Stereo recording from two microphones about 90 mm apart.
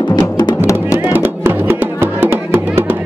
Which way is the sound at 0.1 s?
55° left (ahead or behind).